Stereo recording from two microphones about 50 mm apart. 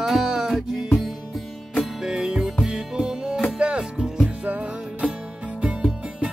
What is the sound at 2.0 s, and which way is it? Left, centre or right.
Music, centre.